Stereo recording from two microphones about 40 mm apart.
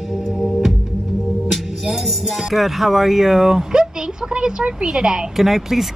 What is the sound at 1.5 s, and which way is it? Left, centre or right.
Speech, centre.